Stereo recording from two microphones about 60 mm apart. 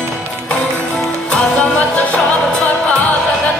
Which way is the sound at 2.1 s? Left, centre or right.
Left.